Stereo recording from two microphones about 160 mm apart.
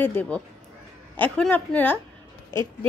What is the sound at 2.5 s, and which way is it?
Speech, 30° right (ahead or behind).